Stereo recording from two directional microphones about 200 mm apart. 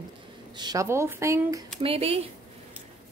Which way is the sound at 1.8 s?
30° right (ahead or behind).